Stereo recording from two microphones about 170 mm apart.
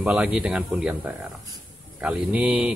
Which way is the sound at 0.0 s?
5° right (ahead or behind).